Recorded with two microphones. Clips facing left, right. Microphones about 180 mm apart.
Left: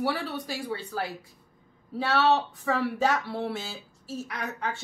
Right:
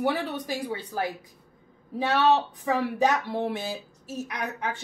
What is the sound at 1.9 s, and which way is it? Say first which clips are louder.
A woman's voice: right 1 dB; 15° right (ahead or behind).